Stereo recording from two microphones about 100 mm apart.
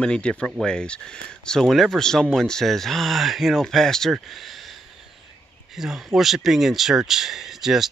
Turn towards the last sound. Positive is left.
turn(degrees=-5)  # may be behind; listen again after turning